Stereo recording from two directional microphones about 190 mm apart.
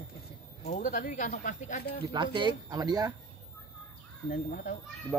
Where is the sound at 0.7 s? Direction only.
40° left (ahead or behind).